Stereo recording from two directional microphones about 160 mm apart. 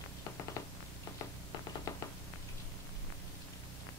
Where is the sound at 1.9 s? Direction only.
20° left (ahead or behind).